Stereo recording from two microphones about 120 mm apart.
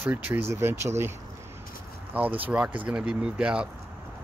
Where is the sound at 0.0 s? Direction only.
15° right (ahead or behind).